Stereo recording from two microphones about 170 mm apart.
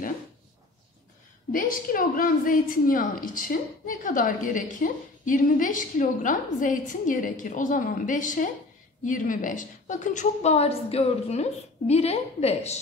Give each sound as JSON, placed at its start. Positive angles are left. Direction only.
{"t": 1.5, "sound": "a woman's voice", "side_deg": 55}